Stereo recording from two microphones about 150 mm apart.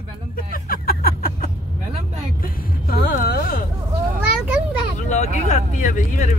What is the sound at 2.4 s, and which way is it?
Music, 80° left.